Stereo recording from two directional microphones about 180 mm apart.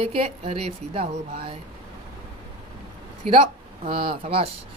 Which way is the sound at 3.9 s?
30° right (ahead or behind).